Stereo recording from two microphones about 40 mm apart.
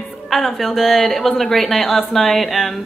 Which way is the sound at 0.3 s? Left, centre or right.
Centre.